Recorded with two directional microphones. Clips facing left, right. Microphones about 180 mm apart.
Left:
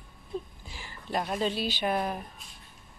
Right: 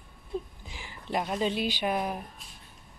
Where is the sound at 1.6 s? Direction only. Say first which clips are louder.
Even; 10° right (ahead or behind).